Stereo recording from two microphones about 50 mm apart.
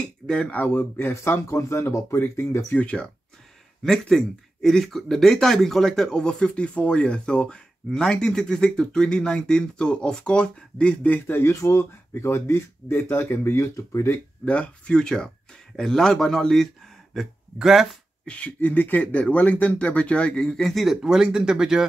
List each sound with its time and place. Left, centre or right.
0.0 s speech: centre
0.7 s speech: left
2.7 s speech: left
4.0 s speech: centre
11.1 s speech: left
11.5 s speech: left
12.1 s speech: left
13.7 s speech: left
14.4 s speech: left
14.9 s speech: centre
17.1 s speech: centre
18.2 s speech: left
20.7 s speech: centre